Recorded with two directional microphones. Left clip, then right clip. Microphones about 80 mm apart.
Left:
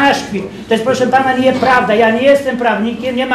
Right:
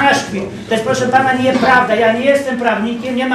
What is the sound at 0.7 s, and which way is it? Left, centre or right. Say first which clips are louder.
Speech: left 3 dB; right.